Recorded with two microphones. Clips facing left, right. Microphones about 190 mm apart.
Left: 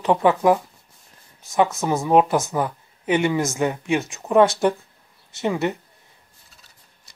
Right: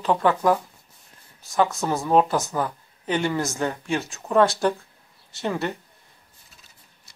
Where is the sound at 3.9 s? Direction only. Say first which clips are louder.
Left 3 dB; 20° left (ahead or behind).